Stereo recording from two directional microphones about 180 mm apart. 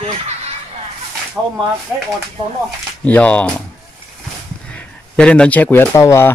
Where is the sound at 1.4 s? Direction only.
10° right (ahead or behind).